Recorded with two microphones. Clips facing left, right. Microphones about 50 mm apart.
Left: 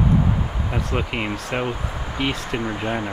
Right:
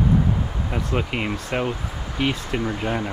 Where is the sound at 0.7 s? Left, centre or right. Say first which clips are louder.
Even; centre.